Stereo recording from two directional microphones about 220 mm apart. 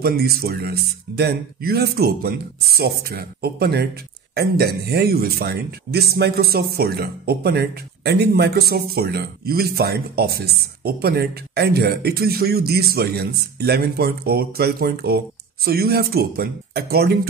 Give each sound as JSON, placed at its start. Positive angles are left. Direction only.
{"t": 0.0, "sound": "speech", "side_deg": -45}